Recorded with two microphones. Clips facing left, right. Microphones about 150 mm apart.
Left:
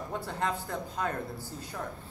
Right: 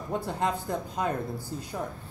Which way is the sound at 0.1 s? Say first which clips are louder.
Right 5 dB; 15° right (ahead or behind).